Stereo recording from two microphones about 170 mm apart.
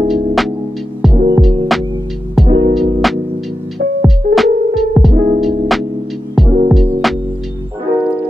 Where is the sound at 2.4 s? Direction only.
25° right (ahead or behind).